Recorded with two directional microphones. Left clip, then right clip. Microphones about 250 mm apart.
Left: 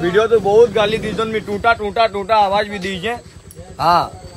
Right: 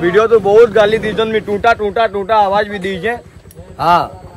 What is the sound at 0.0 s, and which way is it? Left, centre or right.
Speech, right.